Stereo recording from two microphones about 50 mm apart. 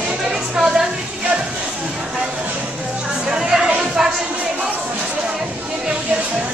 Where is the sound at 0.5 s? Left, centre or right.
Centre.